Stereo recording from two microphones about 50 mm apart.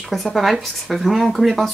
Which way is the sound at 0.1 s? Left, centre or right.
Centre.